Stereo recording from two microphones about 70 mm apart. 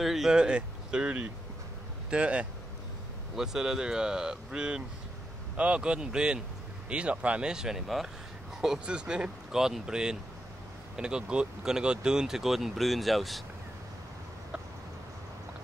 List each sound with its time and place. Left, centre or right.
0.0 s speech: centre